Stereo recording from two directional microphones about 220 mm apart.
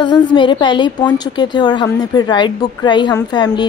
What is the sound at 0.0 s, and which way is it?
A woman's voice, 20° left (ahead or behind).